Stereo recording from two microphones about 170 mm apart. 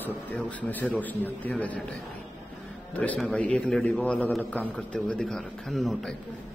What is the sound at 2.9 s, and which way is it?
A man's voice, 10° left (ahead or behind).